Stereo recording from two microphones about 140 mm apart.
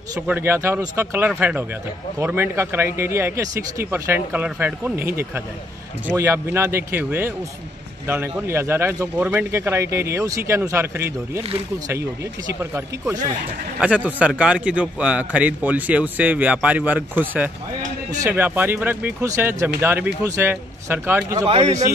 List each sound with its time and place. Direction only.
0.3 s a man's voice: 15° right (ahead or behind)
13.7 s a man's voice: 10° right (ahead or behind)
21.5 s speech: 50° right (ahead or behind)